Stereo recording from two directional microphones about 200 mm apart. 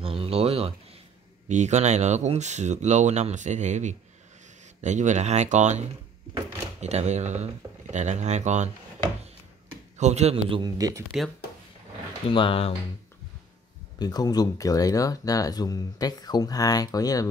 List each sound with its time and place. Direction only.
0.0 s a sound: 30° right (ahead or behind)
1.5 s speech: 35° right (ahead or behind)
6.3 s door: 35° right (ahead or behind)
7.9 s speech: 35° right (ahead or behind)
9.9 s a man's voice: 35° right (ahead or behind); by 11.1 s 15° right (ahead or behind)
12.3 s speech: 25° left (ahead or behind)
13.9 s speech: 20° left (ahead or behind)